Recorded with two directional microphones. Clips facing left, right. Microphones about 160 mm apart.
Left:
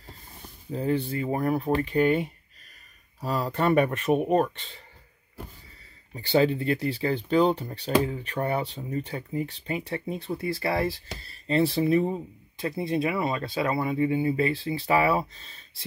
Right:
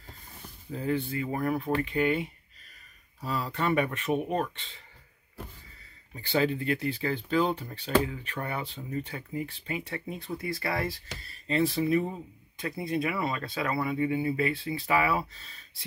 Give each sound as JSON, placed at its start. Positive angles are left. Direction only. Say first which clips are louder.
{"t": 0.7, "sound": "speech", "louder": "left 3 dB", "side_deg": 35}
{"t": 6.1, "sound": "speech", "louder": "left 5 dB", "side_deg": 30}